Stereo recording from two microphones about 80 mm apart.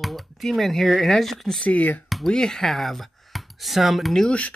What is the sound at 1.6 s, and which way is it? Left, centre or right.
Speech, centre.